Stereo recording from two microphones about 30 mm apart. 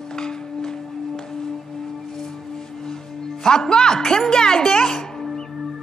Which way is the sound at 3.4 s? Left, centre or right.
Left.